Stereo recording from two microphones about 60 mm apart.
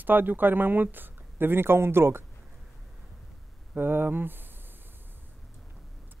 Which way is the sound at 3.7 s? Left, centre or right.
Right.